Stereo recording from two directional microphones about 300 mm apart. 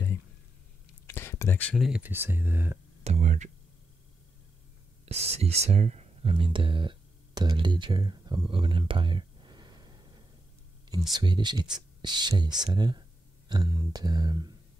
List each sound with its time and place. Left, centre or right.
1.0 s speech: centre
3.0 s speech: right
5.0 s speech: right
11.1 s speech: centre